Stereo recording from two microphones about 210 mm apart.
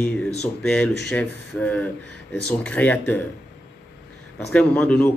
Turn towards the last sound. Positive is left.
turn(degrees=10)  # may be behind; listen again after turning